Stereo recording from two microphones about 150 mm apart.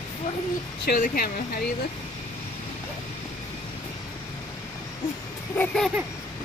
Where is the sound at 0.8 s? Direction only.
70° left (ahead or behind).